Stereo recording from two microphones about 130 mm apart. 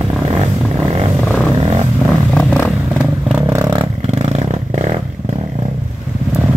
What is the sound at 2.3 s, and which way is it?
Vehicle, 10° left (ahead or behind).